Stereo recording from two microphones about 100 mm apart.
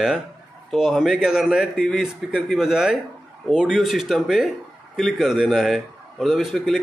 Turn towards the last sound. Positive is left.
turn(degrees=0)  # may be behind; listen again after turning